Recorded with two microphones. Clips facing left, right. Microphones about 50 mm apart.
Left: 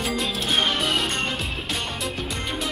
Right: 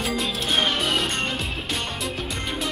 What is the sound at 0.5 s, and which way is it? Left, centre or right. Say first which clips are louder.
Music: even; centre.